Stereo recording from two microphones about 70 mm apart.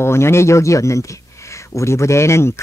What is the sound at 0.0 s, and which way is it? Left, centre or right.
Speech, left.